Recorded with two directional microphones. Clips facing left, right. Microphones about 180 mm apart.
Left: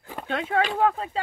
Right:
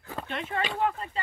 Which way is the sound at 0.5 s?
80° left.